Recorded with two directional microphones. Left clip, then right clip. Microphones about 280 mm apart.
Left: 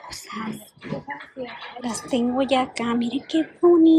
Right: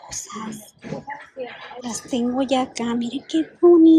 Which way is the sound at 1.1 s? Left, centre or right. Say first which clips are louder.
Right 1 dB; centre.